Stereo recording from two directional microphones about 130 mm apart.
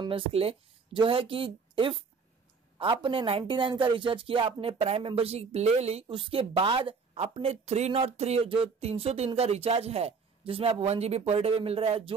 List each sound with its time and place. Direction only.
0.0 s a woman's voice: 45° right (ahead or behind)